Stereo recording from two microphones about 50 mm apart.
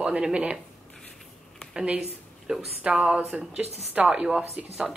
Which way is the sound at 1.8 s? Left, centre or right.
Right.